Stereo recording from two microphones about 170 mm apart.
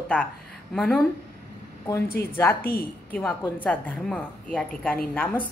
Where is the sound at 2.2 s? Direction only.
70° left (ahead or behind).